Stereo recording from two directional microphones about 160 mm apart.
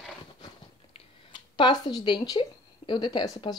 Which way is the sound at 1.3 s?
30° left (ahead or behind).